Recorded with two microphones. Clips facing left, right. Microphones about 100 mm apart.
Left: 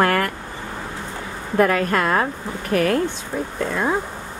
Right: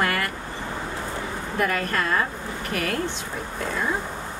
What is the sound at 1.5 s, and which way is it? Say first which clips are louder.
Speech: left 7 dB; 50° left (ahead or behind).